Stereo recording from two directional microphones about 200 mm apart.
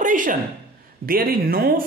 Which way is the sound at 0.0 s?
40° right (ahead or behind).